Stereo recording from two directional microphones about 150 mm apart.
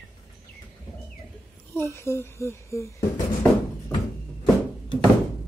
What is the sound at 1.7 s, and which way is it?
Speech, 15° left (ahead or behind).